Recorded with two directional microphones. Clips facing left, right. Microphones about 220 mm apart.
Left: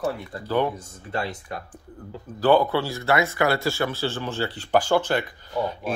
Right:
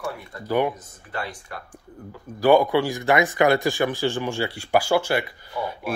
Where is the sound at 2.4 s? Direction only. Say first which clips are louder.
Right 2 dB; 10° right (ahead or behind).